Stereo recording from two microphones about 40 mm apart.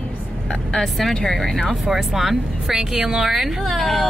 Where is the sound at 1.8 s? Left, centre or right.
Centre.